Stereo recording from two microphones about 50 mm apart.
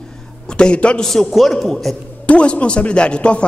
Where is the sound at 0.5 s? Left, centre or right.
Centre.